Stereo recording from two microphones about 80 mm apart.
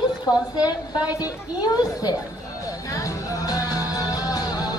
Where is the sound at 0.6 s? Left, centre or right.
Left.